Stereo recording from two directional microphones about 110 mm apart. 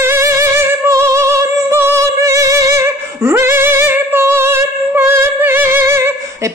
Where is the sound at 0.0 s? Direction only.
25° right (ahead or behind).